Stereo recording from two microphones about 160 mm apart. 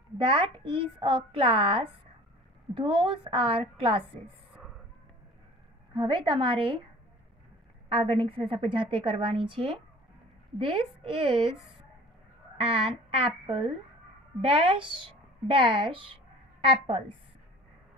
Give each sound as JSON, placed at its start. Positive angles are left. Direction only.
{"t": 0.2, "sound": "a woman's voice", "side_deg": -35}
{"t": 5.9, "sound": "a woman's voice", "side_deg": -30}
{"t": 7.9, "sound": "a woman's voice", "side_deg": -30}
{"t": 12.6, "sound": "a woman's voice", "side_deg": -35}